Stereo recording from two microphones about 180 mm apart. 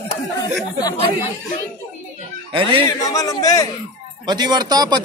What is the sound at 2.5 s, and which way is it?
Speech, 30° right (ahead or behind).